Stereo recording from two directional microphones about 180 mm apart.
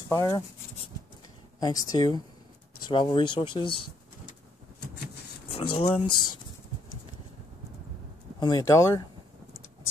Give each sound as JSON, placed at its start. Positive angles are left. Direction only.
{"t": 0.1, "sound": "speech", "side_deg": 20}
{"t": 1.6, "sound": "speech", "side_deg": 25}
{"t": 5.5, "sound": "speech", "side_deg": 30}
{"t": 8.4, "sound": "speech", "side_deg": 20}